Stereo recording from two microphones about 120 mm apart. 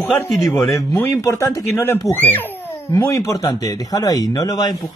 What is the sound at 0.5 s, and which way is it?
Speech, centre (ahead or behind).